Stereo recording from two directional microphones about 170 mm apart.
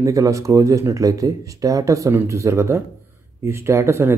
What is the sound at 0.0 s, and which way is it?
Speech, 20° right (ahead or behind).